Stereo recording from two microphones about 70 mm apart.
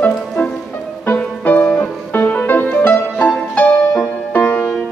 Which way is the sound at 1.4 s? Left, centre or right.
Left.